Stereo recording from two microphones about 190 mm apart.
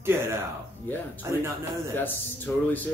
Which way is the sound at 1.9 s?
10° left (ahead or behind).